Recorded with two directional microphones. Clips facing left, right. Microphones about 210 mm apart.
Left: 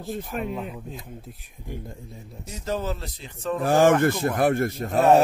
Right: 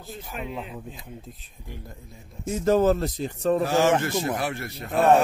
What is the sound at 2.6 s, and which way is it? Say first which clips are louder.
A man's voice: right 9 dB; 50° right (ahead or behind).